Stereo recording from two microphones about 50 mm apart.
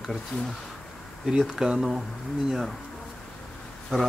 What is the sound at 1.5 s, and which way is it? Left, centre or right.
Speech, centre.